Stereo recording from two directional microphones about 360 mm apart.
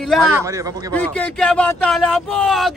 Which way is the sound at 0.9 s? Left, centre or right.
Centre.